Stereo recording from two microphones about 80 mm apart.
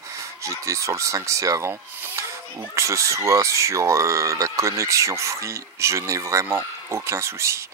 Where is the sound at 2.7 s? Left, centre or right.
Right.